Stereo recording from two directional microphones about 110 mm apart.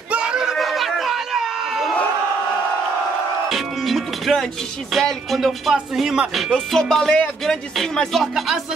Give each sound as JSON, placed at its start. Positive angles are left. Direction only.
{"t": 0.1, "sound": "crowd", "side_deg": -10}
{"t": 3.4, "sound": "music", "side_deg": 0}
{"t": 4.9, "sound": "speech", "side_deg": 0}